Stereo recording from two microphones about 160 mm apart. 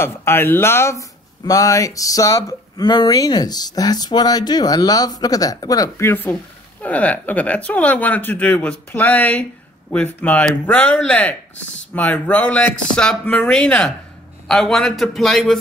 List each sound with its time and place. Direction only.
0.0 s speech: 15° left (ahead or behind)